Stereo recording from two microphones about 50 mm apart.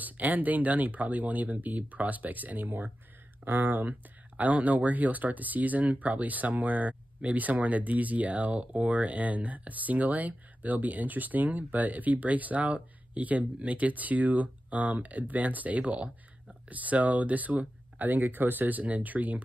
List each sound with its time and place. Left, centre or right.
0.0 s speech: right